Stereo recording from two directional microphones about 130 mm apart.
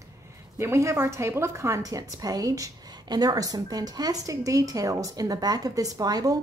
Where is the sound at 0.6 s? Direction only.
20° right (ahead or behind).